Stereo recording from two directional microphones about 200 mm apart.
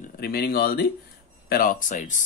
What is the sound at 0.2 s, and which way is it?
Speech, 50° left (ahead or behind).